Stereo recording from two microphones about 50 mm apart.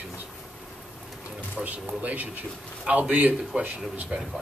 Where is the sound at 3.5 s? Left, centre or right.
Right.